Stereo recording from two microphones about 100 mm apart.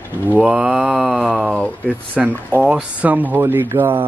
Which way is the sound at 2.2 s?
Centre (ahead or behind).